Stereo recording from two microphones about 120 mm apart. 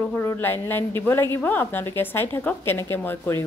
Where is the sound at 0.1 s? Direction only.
20° left (ahead or behind).